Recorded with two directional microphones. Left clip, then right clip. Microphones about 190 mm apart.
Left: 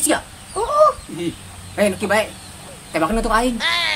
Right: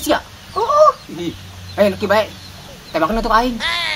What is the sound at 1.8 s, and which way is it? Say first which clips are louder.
A woman's voice: right 3 dB; centre (ahead or behind).